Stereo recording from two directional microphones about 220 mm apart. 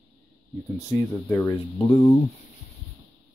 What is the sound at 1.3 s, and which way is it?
Speech, 10° left (ahead or behind).